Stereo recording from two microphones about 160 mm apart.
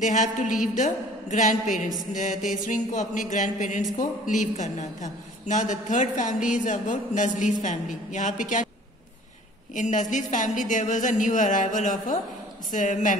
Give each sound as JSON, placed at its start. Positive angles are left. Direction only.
{"t": 0.0, "sound": "a woman's voice", "side_deg": 50}
{"t": 9.8, "sound": "a woman's voice", "side_deg": 50}